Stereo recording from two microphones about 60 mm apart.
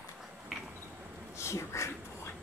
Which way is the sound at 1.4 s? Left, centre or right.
Left.